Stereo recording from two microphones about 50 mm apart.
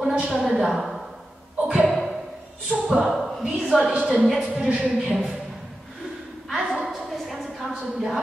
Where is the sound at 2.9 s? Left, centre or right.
Centre.